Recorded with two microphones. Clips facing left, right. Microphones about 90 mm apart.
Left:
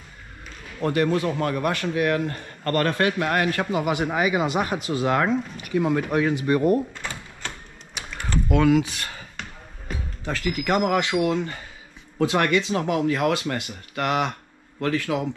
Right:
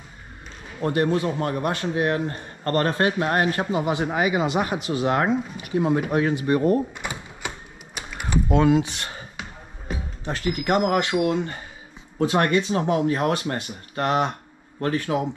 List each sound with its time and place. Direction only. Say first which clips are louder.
0.8 s a man's voice: even; 30° right (ahead or behind)
7.9 s typing: right 1 dB; 10° right (ahead or behind)
8.5 s a man's voice: even; 25° right (ahead or behind)
10.2 s a man's voice: right 1 dB; 30° right (ahead or behind)